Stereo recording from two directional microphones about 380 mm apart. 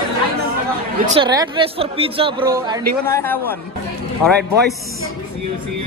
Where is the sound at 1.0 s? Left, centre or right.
Centre.